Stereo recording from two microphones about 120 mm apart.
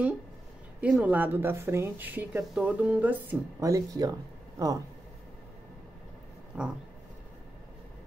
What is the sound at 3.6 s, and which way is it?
Speech, 30° right (ahead or behind).